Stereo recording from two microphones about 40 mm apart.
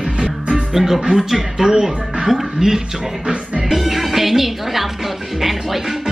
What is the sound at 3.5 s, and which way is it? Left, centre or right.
Music, centre.